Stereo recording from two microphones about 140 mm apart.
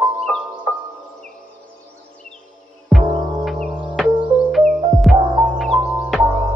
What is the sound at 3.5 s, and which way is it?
Music, centre (ahead or behind).